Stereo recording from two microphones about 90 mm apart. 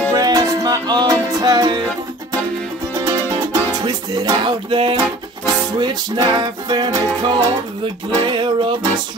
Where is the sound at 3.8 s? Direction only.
50° right (ahead or behind); by 5.0 s 70° right (ahead or behind).